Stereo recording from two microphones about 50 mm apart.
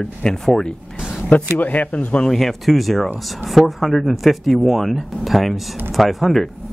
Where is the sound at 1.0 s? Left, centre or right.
Centre.